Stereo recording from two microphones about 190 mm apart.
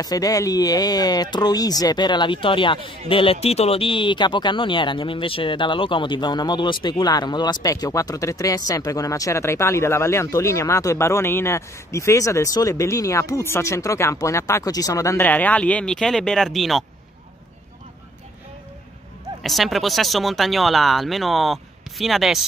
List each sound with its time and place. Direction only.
0.0 s speech: 20° left (ahead or behind); by 16.8 s centre (ahead or behind)
19.4 s speech: centre (ahead or behind)